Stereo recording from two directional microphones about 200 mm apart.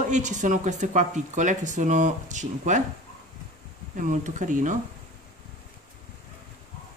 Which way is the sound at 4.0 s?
40° right (ahead or behind).